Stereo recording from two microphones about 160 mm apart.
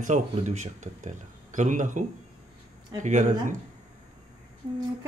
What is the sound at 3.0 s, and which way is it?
Speech, 50° right (ahead or behind).